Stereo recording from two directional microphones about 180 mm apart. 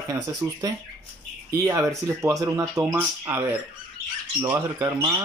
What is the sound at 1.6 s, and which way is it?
Speech, 15° right (ahead or behind).